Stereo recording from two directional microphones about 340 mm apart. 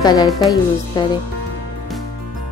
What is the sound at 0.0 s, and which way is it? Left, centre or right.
Speech, centre.